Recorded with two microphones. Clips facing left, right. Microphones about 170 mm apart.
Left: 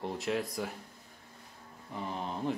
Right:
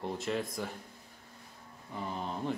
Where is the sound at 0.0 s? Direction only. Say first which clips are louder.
Left 1 dB; centre (ahead or behind).